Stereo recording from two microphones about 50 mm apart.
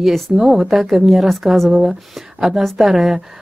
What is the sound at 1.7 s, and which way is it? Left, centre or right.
Speech, centre.